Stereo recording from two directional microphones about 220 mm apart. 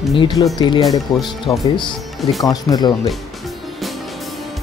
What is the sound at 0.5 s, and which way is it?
Speech, 20° left (ahead or behind).